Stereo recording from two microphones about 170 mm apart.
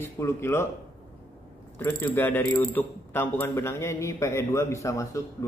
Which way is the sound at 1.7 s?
10° left (ahead or behind).